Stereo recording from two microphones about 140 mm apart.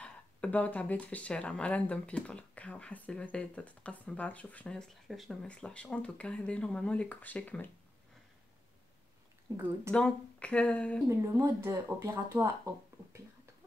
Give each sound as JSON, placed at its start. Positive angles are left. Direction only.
{"t": 0.0, "sound": "speech", "side_deg": 10}
{"t": 9.5, "sound": "speech", "side_deg": -20}
{"t": 9.8, "sound": "speech", "side_deg": 5}
{"t": 11.1, "sound": "speech", "side_deg": -20}